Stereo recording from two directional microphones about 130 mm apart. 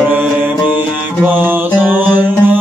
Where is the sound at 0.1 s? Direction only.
15° right (ahead or behind).